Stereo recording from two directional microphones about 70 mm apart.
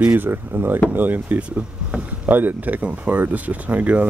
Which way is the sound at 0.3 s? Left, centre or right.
Right.